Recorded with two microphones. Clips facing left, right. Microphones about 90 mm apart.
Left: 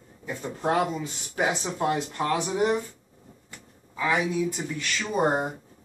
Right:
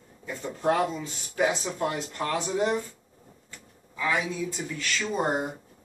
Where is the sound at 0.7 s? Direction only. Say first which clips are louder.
Even; 25° left (ahead or behind).